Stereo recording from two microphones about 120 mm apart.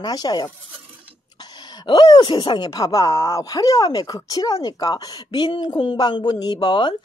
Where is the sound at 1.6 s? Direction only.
40° left (ahead or behind).